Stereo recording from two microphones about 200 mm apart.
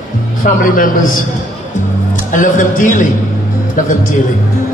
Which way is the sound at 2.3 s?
40° left (ahead or behind).